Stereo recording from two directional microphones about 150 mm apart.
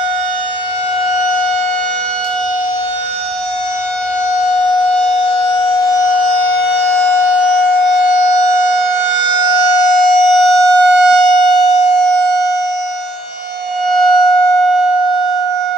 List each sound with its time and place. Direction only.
4.9 s civil defense siren: 5° left (ahead or behind)
9.9 s civil defense siren: centre (ahead or behind)
13.8 s civil defense siren: centre (ahead or behind)